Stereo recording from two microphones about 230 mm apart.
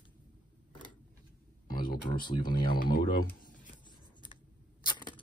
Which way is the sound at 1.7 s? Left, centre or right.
Left.